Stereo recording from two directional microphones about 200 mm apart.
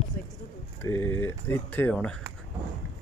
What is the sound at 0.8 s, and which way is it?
Speech, 10° left (ahead or behind).